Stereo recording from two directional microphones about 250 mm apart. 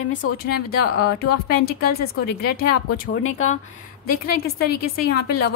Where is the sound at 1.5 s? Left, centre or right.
Left.